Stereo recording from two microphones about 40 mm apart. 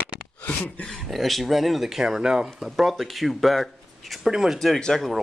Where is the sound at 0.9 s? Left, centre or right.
Centre.